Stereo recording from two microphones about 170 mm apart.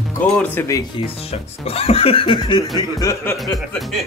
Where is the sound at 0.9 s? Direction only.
35° left (ahead or behind).